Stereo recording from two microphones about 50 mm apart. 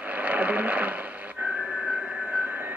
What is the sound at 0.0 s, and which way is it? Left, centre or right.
Radio, right.